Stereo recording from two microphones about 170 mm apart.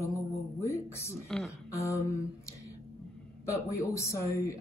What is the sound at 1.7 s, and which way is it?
Speech, 15° left (ahead or behind).